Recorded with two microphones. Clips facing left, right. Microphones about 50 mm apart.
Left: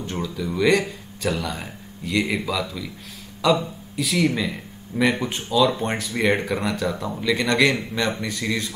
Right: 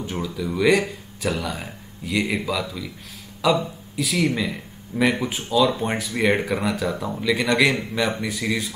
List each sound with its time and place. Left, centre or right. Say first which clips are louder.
0.0 s speech: even; centre